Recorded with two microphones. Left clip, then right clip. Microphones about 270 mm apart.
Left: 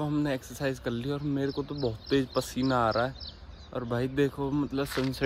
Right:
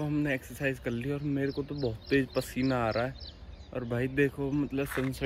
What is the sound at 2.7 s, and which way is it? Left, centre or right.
Speech, centre.